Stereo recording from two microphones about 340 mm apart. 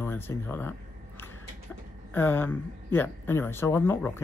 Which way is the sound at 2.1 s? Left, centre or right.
Centre.